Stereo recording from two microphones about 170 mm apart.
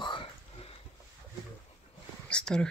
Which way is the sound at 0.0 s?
30° left (ahead or behind).